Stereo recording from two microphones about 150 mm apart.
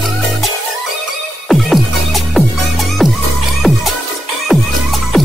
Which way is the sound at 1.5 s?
Centre (ahead or behind).